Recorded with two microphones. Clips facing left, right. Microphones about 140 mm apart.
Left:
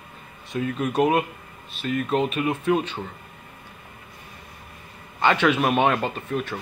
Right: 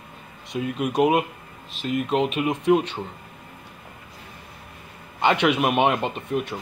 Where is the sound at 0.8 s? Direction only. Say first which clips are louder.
Right 1 dB; 10° right (ahead or behind).